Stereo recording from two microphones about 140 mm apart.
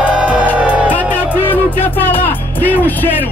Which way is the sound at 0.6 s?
10° right (ahead or behind).